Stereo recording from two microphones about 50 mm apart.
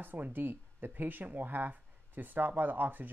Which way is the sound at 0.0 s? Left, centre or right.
Right.